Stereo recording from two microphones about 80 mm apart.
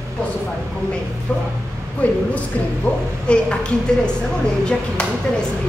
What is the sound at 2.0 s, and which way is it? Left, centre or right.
Speech, centre.